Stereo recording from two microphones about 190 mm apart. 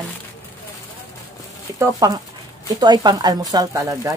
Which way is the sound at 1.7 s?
15° right (ahead or behind).